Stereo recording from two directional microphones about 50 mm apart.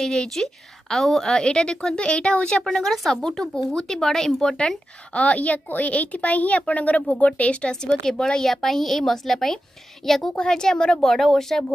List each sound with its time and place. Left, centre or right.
0.0 s a woman's voice: centre
2.6 s a woman's voice: centre
4.6 s a woman's voice: left
8.0 s a woman's voice: centre
10.3 s a woman's voice: centre